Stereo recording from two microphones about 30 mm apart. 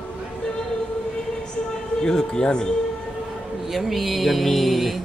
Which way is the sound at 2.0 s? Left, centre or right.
Left.